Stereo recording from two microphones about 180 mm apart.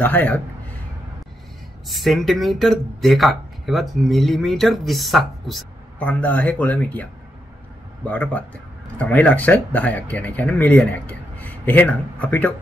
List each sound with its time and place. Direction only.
0.0 s speech: 10° left (ahead or behind)
1.9 s speech: centre (ahead or behind)
8.1 s speech: 10° left (ahead or behind)